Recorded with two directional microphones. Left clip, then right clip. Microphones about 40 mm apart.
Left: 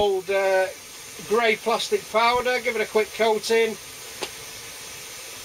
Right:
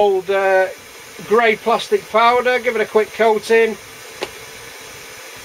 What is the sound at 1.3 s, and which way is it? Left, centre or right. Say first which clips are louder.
Speech: right 7 dB; left.